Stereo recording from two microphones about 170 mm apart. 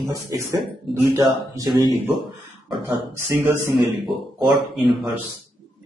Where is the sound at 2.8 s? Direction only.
15° right (ahead or behind).